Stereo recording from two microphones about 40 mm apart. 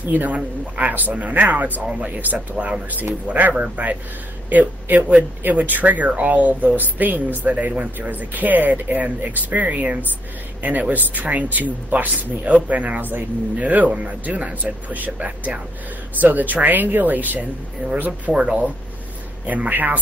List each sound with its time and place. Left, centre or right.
0.0 s speech: right
8.1 s speech: right
18.3 s speech: right
19.7 s speech: right